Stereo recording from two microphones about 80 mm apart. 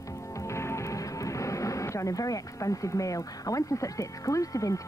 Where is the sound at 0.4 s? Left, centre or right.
Left.